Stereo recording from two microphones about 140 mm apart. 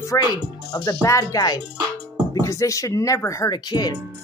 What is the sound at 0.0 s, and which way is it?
Speech, 25° left (ahead or behind).